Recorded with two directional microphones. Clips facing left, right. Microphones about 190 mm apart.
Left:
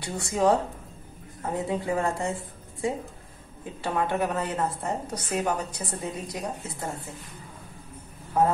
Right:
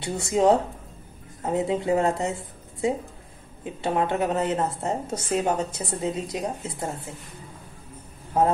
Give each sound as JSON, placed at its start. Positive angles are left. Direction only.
{"t": 0.0, "sound": "a woman's voice", "side_deg": -25}
{"t": 3.8, "sound": "a woman's voice", "side_deg": -20}